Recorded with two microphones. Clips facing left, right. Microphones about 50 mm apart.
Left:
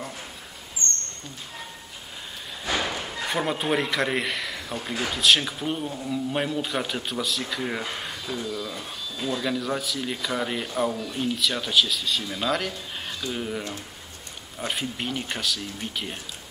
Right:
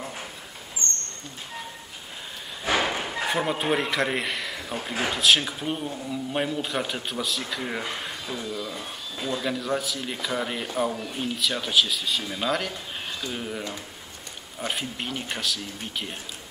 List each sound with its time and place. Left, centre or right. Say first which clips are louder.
2.6 s thump: right 3 dB; right
3.3 s speech: even; centre
9.4 s speech: right 1 dB; centre